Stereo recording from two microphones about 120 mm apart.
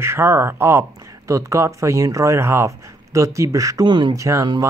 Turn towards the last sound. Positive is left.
turn(degrees=-25)  # may be behind; listen again after turning